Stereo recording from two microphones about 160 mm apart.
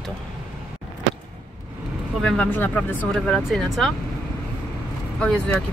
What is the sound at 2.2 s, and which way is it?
Speech, 5° left (ahead or behind).